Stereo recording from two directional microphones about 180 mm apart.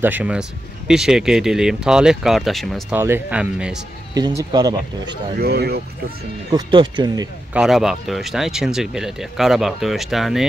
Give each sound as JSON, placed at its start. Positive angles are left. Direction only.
{"t": 0.0, "sound": "speech", "side_deg": -10}
{"t": 2.9, "sound": "speech", "side_deg": -10}
{"t": 4.4, "sound": "speech", "side_deg": -20}
{"t": 5.4, "sound": "speech", "side_deg": -60}
{"t": 6.5, "sound": "speech", "side_deg": -25}
{"t": 7.5, "sound": "speech", "side_deg": 0}